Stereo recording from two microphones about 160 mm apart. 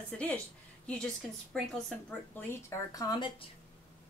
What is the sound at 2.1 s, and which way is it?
Speech, 15° left (ahead or behind).